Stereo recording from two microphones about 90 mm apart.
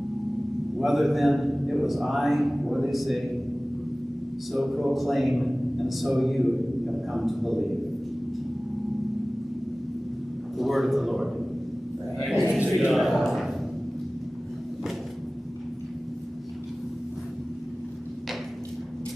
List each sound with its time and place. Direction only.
0.7 s a man's voice: centre (ahead or behind)
4.5 s a man's voice: centre (ahead or behind)
10.6 s a man's voice: centre (ahead or behind)
12.4 s a sound: 15° right (ahead or behind)
12.7 s a man's voice: centre (ahead or behind)